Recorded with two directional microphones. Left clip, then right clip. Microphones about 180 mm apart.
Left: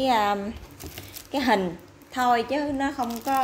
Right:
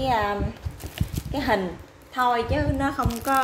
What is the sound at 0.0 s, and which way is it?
A woman's voice, 35° left (ahead or behind).